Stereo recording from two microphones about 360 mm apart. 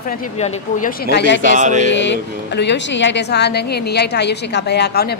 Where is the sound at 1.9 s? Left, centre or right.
Left.